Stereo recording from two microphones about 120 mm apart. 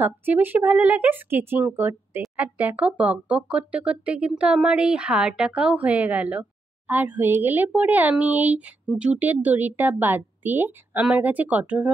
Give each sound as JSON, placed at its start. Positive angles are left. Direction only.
{"t": 0.0, "sound": "speech", "side_deg": -15}